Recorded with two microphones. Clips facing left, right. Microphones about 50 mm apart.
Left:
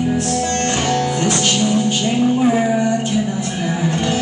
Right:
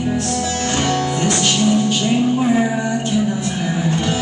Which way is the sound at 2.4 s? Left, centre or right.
Centre.